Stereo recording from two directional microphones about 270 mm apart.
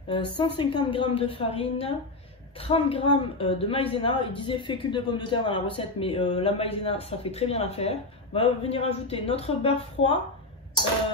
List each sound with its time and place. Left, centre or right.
0.1 s a man's voice: centre
10.0 s speech: left